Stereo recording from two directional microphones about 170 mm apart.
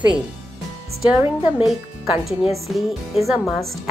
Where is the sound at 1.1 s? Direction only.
15° right (ahead or behind).